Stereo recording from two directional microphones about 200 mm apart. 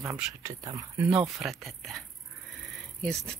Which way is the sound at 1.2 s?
Centre (ahead or behind).